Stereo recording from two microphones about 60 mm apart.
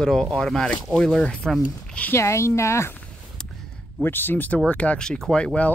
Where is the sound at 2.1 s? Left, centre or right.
Left.